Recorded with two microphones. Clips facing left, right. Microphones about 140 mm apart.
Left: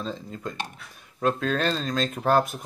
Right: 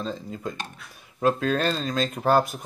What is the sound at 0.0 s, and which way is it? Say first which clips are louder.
Speech: right 2 dB; centre (ahead or behind).